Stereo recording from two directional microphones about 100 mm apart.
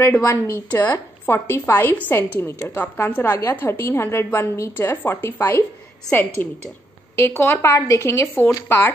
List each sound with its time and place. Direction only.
0.0 s a woman's voice: 20° left (ahead or behind)